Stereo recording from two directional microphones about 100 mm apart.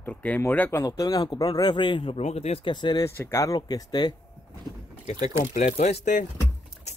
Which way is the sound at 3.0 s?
25° left (ahead or behind).